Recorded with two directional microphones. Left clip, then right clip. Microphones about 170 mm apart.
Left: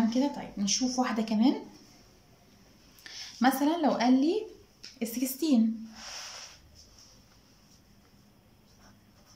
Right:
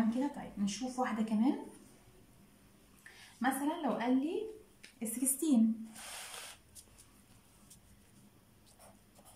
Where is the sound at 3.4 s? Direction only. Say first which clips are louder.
Left 8 dB; 30° left (ahead or behind).